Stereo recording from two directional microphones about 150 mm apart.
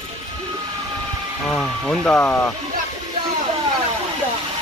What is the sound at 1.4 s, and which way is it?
Speech, 5° left (ahead or behind).